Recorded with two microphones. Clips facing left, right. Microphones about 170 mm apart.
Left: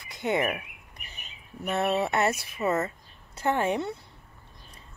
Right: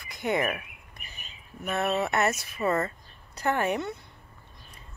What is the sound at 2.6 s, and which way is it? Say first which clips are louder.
Speech: even; 5° left (ahead or behind).